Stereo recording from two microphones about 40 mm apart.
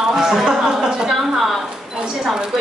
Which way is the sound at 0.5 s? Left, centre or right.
Centre.